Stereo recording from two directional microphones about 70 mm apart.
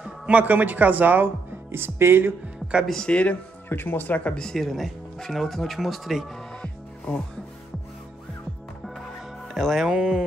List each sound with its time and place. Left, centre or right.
0.0 s speech: centre; by 2.3 s right
2.9 s speech: centre
3.6 s speech: left
4.4 s speech: centre
9.5 s music: centre
9.8 s speech: centre